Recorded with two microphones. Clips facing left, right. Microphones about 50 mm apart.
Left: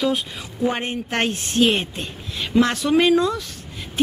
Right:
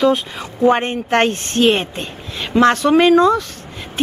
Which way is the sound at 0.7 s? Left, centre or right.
Right.